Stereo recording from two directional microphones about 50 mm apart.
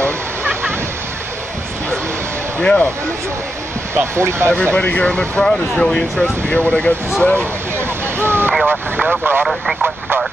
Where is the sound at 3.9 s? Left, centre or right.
Right.